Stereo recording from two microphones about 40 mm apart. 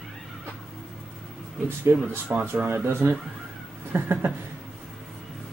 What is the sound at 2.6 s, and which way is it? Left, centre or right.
Speech, right.